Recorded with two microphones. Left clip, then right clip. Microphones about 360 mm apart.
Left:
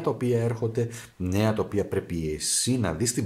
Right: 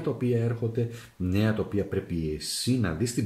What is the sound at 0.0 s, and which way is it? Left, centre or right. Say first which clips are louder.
Speech: left 3 dB; centre.